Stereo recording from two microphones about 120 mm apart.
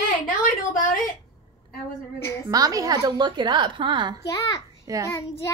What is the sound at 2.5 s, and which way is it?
A woman's voice, 30° right (ahead or behind).